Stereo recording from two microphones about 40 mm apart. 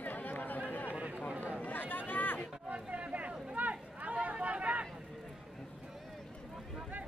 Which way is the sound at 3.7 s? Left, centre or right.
Right.